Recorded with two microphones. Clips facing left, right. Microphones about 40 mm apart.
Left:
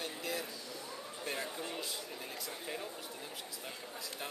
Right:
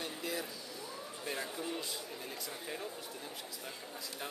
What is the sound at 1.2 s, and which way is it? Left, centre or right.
Speech, centre.